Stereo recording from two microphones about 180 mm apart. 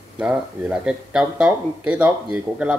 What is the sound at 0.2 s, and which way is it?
Speech, 5° right (ahead or behind).